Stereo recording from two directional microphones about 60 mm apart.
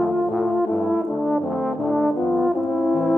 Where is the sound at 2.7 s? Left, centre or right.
Left.